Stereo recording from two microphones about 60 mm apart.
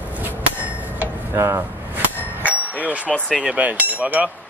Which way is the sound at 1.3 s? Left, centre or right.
Right.